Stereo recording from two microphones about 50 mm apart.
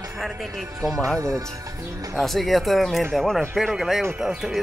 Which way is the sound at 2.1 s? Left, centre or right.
Centre.